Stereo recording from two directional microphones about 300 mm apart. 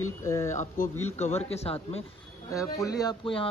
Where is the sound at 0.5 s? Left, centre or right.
Left.